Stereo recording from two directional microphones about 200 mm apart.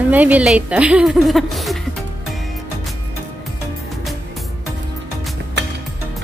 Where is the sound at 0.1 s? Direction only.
5° right (ahead or behind).